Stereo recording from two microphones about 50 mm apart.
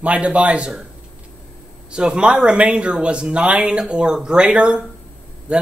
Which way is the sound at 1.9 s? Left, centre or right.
Centre.